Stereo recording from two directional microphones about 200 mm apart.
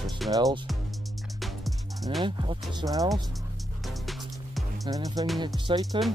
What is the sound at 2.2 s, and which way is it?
Speech, 25° right (ahead or behind).